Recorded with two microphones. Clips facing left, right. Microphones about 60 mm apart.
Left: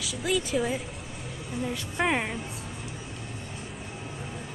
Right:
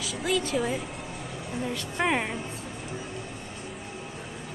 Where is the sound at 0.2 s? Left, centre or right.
Centre.